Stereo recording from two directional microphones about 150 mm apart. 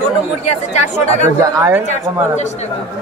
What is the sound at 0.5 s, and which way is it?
Speech, 50° left (ahead or behind).